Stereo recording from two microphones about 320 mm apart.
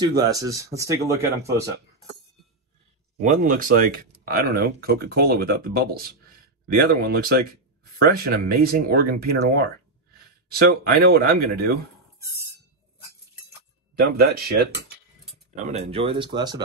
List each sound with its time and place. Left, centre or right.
0.2 s speech: centre
3.2 s speech: right
13.9 s speech: right
15.6 s speech: centre